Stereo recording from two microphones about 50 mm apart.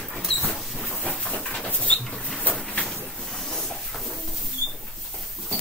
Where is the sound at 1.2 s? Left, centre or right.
Left.